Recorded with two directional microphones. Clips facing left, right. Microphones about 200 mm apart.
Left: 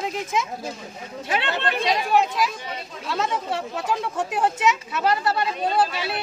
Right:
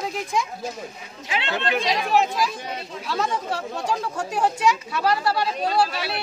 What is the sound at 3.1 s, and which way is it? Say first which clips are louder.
Speech: even; centre (ahead or behind).